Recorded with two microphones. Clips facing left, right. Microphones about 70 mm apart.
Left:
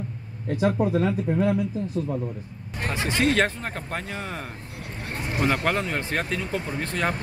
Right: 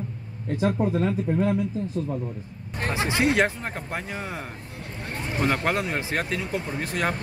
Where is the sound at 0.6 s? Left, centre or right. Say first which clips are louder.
Left 1 dB; centre.